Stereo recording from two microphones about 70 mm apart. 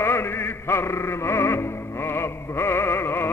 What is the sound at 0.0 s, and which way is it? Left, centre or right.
Music, left.